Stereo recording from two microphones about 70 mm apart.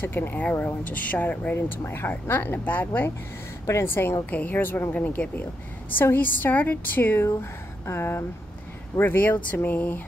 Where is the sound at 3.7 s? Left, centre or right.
Left.